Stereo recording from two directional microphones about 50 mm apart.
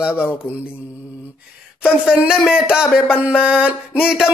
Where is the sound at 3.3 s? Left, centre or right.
Centre.